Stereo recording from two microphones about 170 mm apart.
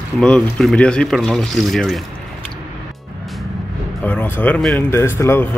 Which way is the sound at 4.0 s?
10° left (ahead or behind).